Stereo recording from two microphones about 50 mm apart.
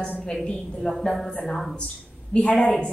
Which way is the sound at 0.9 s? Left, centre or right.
Centre.